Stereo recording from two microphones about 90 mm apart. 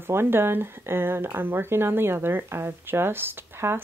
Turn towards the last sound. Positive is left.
turn(degrees=-25)  # may be behind; listen again after turning